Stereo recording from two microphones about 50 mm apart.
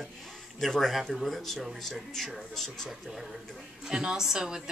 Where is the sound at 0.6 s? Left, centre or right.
Centre.